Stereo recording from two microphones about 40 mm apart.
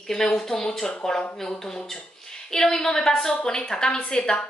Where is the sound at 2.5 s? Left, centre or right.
Centre.